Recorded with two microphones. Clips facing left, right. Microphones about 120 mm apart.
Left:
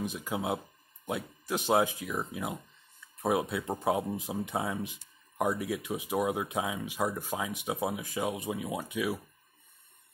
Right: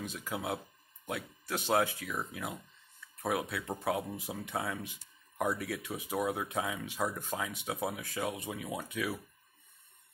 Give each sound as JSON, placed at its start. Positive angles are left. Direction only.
{"t": 0.0, "sound": "speech", "side_deg": 15}